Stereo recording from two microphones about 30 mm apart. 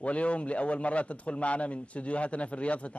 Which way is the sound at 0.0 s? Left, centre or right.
Left.